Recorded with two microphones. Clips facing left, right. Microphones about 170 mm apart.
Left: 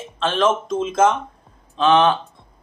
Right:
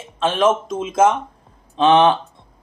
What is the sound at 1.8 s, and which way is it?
Speech, 20° right (ahead or behind).